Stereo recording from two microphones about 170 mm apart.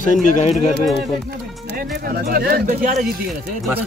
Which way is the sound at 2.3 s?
65° right (ahead or behind).